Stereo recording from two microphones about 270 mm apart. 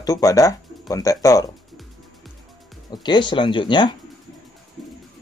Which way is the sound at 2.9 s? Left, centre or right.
Centre.